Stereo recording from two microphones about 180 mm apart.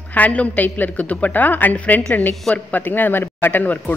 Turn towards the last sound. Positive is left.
turn(degrees=10)  # may be behind; listen again after turning